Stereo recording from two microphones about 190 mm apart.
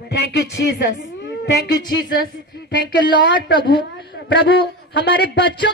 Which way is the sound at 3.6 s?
25° left (ahead or behind).